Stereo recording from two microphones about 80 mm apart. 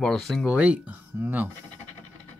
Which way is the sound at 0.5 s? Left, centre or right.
Centre.